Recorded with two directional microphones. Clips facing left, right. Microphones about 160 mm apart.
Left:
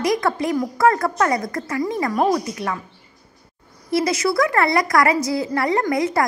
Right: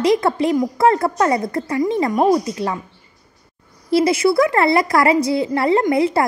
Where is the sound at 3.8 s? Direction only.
25° right (ahead or behind).